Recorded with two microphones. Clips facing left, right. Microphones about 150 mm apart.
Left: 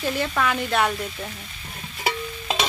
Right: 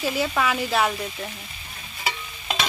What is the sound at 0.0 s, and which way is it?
Speech, 5° right (ahead or behind).